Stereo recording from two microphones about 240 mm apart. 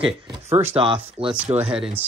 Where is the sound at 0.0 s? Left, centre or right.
Right.